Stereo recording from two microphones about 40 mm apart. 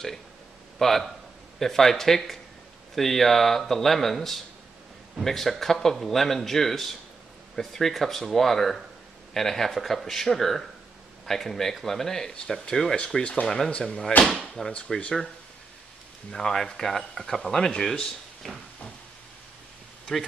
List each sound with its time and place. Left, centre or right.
0.7 s speech: centre
13.1 s speech: left
16.3 s speech: centre
18.4 s speech: centre